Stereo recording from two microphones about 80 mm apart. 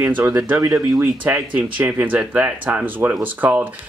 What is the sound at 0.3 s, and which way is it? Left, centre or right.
Speech, right.